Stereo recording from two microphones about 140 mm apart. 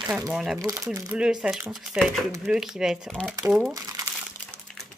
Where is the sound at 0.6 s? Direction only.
25° right (ahead or behind).